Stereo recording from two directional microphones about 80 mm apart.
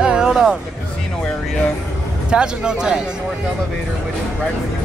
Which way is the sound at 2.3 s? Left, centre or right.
Centre.